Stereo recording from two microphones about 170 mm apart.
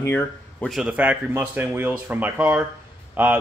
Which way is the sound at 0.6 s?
5° right (ahead or behind).